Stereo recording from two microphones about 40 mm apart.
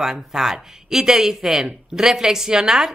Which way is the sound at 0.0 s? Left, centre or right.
Centre.